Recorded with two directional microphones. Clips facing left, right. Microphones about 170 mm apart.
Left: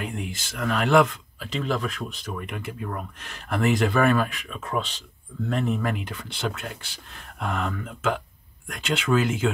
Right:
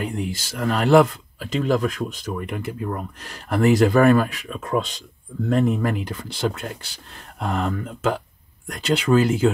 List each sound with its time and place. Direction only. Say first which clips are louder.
0.0 s speech: right 5 dB; 35° right (ahead or behind)